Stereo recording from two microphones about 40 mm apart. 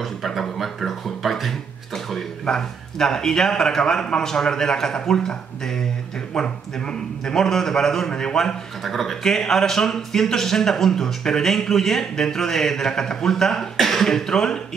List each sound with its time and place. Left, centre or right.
0.0 s speech: centre
2.4 s a man's voice: centre
8.8 s speech: centre